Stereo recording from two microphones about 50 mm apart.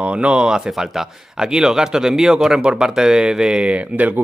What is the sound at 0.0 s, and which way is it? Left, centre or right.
Speech, right.